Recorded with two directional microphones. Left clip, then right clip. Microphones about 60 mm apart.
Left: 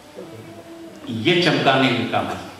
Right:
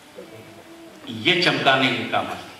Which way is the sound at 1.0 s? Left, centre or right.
Right.